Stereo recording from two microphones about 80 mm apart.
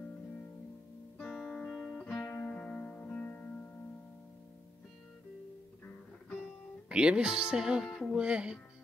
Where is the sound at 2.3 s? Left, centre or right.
Centre.